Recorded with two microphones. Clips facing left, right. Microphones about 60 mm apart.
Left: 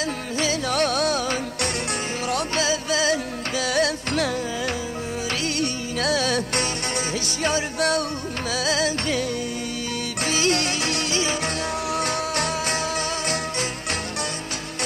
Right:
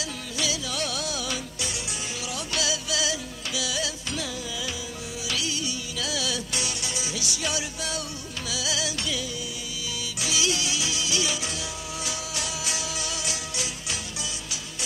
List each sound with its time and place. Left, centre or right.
0.4 s music: left
2.5 s music: left
5.4 s music: left
10.2 s music: left